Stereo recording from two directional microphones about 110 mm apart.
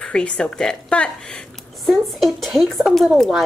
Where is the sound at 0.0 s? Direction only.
10° left (ahead or behind).